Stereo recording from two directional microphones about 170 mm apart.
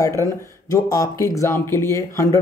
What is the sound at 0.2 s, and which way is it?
Speech, 20° left (ahead or behind).